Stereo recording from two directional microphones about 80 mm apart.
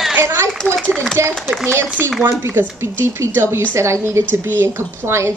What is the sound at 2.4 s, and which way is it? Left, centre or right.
A woman's voice, right.